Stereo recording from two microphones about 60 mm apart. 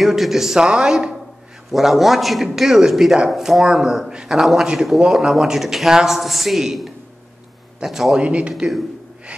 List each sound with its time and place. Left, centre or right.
0.0 s a man's voice: centre
8.2 s speech: centre